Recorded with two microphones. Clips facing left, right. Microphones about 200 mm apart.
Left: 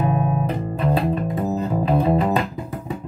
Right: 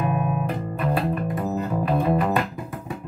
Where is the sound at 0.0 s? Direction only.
30° left (ahead or behind).